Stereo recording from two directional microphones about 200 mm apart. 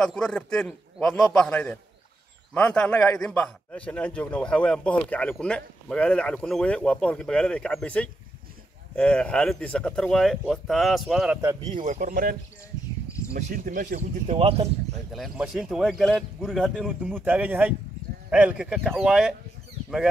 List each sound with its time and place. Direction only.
0.0 s a man's voice: 5° left (ahead or behind)
11.6 s speech: 40° right (ahead or behind)
13.4 s speech: 40° right (ahead or behind)
15.1 s a man's voice: centre (ahead or behind)